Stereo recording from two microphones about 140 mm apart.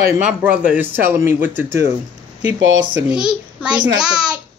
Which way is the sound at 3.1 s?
5° right (ahead or behind).